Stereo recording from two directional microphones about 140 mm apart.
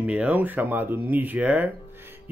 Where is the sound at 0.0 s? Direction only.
10° right (ahead or behind).